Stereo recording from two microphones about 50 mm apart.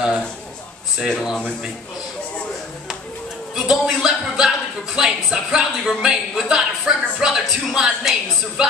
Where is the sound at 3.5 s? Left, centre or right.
Centre.